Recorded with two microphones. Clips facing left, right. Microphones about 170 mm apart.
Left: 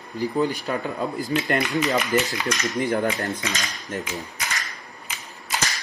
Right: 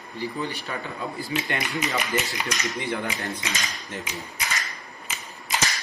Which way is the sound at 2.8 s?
45° left (ahead or behind).